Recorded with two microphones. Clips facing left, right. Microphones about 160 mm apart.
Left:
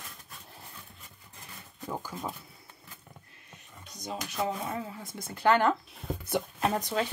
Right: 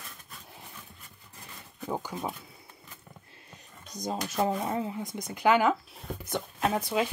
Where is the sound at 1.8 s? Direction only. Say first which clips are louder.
Right 3 dB; 20° right (ahead or behind).